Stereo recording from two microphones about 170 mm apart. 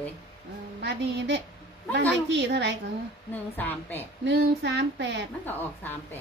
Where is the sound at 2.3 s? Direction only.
90° right.